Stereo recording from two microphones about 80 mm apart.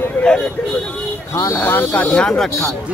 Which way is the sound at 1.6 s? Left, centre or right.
Left.